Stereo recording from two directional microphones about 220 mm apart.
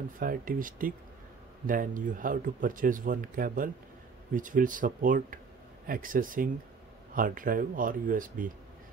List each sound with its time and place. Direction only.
0.2 s speech: 40° right (ahead or behind)